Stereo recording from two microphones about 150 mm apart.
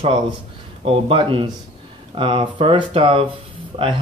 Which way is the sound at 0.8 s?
35° right (ahead or behind).